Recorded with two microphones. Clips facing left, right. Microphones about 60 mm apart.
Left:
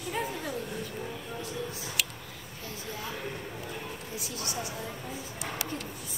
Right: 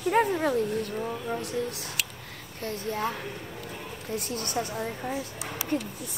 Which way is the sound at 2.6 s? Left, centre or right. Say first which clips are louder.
Right 10 dB; right.